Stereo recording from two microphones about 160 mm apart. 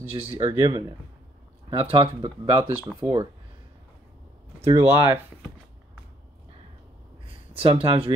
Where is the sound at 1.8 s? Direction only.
35° right (ahead or behind).